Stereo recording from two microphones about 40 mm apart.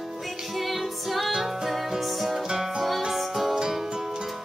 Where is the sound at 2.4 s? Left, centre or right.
Centre.